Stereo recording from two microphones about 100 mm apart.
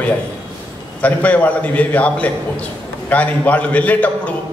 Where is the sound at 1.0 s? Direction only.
15° left (ahead or behind).